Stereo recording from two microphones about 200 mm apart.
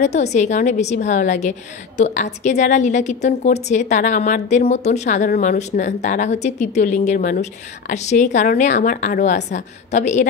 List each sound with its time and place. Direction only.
0.0 s a woman's voice: 35° left (ahead or behind)